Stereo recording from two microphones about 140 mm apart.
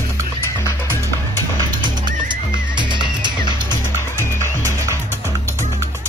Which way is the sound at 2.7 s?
35° right (ahead or behind).